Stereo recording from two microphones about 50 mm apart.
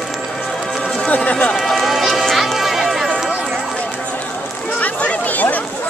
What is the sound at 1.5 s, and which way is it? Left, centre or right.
Run, centre.